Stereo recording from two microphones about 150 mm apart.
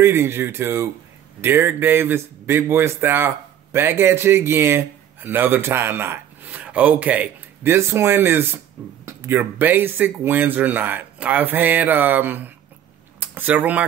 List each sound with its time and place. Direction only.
0.0 s speech: 15° right (ahead or behind)